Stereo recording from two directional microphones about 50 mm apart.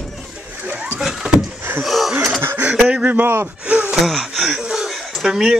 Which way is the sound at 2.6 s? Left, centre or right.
Right.